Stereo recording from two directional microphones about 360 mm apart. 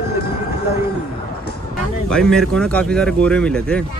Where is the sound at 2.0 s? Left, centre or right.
Centre.